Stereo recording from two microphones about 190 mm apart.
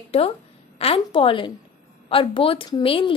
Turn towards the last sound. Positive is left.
turn(degrees=25)  # may be behind; listen again after turning